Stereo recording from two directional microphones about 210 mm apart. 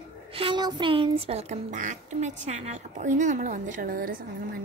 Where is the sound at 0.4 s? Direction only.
20° right (ahead or behind).